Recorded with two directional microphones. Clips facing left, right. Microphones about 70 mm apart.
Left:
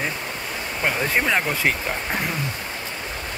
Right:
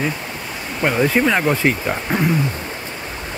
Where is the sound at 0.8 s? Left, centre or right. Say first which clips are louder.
Right 6 dB; centre.